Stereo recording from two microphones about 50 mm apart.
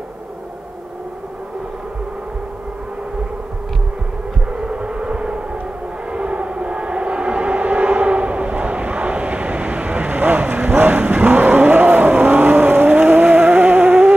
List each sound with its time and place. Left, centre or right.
4.6 s vehicle: centre
6.1 s civil defense siren: right